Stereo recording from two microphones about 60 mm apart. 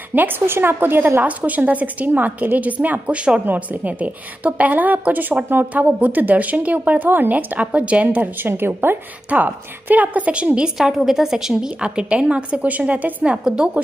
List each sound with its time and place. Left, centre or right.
0.1 s a woman's voice: right
9.3 s a woman's voice: right
10.8 s a woman's voice: centre